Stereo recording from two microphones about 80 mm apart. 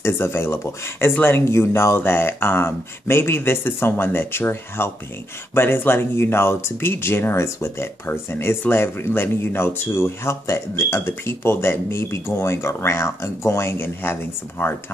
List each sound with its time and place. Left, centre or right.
0.0 s speech: left